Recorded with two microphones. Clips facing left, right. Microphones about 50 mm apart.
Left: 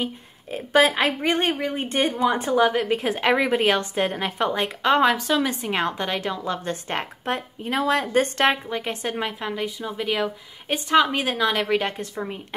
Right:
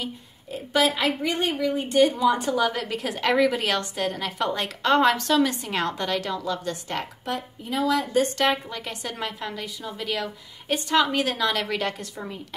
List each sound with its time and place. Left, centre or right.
0.5 s a woman's voice: left
8.6 s a woman's voice: left